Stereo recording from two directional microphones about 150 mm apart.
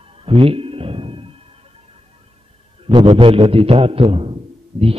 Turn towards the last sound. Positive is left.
turn(degrees=-40)  # may be behind; listen again after turning